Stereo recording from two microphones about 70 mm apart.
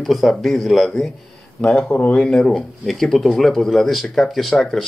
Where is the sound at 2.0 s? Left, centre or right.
Centre.